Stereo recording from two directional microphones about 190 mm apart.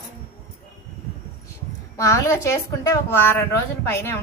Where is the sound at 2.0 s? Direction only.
15° left (ahead or behind).